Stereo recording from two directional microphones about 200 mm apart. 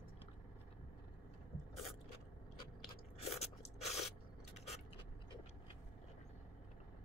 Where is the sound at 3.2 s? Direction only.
30° left (ahead or behind).